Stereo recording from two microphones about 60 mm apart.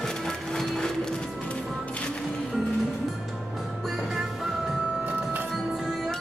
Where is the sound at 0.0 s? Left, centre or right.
Centre.